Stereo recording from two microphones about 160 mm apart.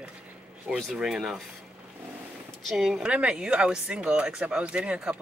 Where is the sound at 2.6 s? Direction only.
Centre (ahead or behind).